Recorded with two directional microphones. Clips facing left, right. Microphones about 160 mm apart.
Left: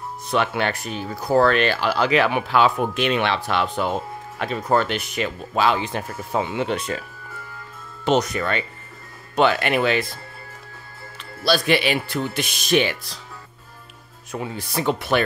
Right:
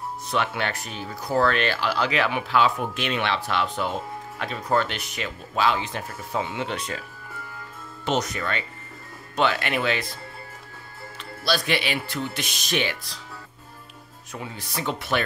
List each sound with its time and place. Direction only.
0.3 s speech: 55° left (ahead or behind)
8.0 s speech: 60° left (ahead or behind)
11.4 s speech: 55° left (ahead or behind)
14.3 s speech: 55° left (ahead or behind)